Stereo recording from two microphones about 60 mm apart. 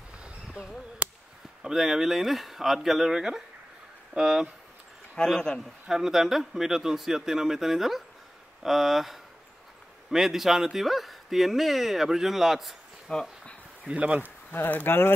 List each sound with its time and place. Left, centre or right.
0.2 s a sound: centre
1.6 s speech: centre
5.1 s speech: centre
5.6 s speech: centre
13.1 s speech: centre
13.8 s speech: right
14.5 s speech: left